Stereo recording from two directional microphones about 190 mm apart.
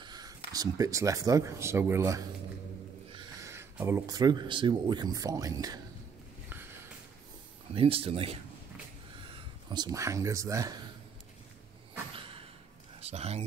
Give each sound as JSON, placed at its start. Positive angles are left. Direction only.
{"t": 0.0, "sound": "a sound", "side_deg": -20}
{"t": 0.5, "sound": "speech", "side_deg": -20}
{"t": 3.4, "sound": "speech", "side_deg": -15}
{"t": 7.7, "sound": "speech", "side_deg": -30}
{"t": 13.0, "sound": "speech", "side_deg": -35}